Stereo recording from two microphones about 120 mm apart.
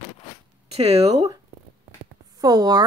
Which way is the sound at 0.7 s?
60° right (ahead or behind).